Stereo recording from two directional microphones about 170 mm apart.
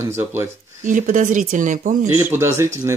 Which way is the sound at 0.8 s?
50° right (ahead or behind).